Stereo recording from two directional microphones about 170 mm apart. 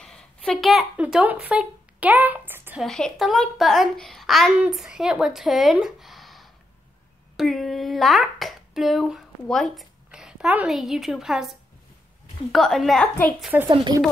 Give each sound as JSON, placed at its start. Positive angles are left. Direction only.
{"t": 0.0, "sound": "speech", "side_deg": 5}
{"t": 2.8, "sound": "a child's voice", "side_deg": 0}
{"t": 12.5, "sound": "a child's voice", "side_deg": 0}
{"t": 13.7, "sound": "speech", "side_deg": -25}